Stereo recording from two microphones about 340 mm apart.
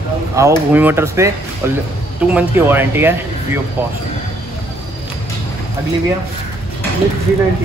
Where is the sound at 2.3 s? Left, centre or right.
Centre.